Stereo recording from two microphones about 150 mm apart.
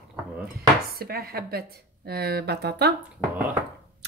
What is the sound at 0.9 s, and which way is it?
Speech, 90° right.